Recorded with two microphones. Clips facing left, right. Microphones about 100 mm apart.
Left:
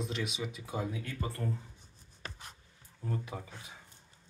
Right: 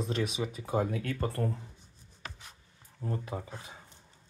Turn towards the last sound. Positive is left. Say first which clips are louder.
# right 4 dB
turn(degrees=-35)  # may be behind; listen again after turning